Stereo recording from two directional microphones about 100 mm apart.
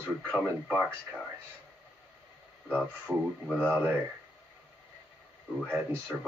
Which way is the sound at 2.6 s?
20° right (ahead or behind).